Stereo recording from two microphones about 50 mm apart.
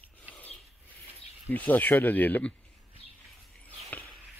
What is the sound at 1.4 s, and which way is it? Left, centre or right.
Speech, left.